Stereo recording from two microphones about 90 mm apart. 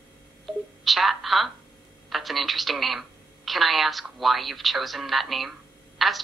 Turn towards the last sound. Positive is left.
turn(degrees=0)  # may be behind; listen again after turning